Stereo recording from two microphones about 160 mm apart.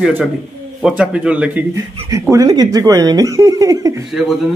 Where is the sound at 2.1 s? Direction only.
25° right (ahead or behind).